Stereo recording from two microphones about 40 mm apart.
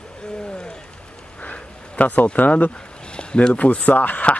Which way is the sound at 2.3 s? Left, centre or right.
Left.